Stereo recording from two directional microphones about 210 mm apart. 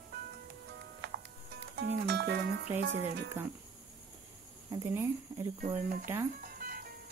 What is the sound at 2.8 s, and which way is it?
Speech, 55° right (ahead or behind).